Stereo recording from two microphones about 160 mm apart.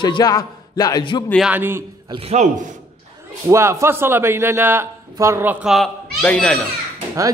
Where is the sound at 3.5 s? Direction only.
15° right (ahead or behind).